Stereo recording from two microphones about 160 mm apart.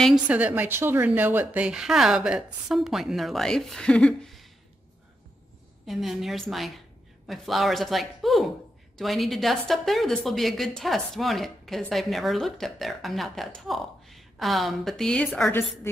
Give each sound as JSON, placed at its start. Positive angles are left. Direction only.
{"t": 0.0, "sound": "a woman's voice", "side_deg": -5}
{"t": 5.9, "sound": "a woman's voice", "side_deg": 0}